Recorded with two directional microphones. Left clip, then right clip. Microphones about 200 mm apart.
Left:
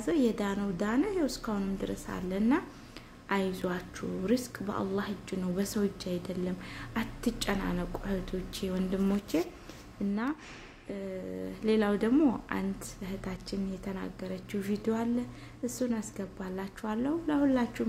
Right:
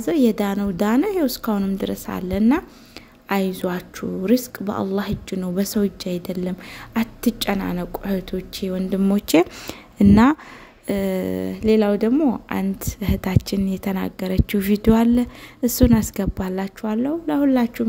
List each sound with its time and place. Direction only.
0.0 s a woman's voice: 40° right (ahead or behind)
10.9 s a sound: 55° right (ahead or behind)
11.6 s a woman's voice: 35° right (ahead or behind)
12.4 s a woman's voice: 40° right (ahead or behind)